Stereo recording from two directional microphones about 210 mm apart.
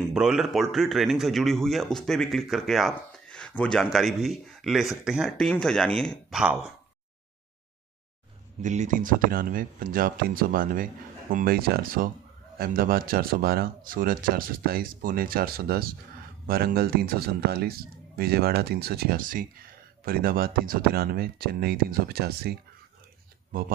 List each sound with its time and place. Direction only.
0.1 s a man's voice: 5° right (ahead or behind)
8.6 s speech: 35° right (ahead or behind)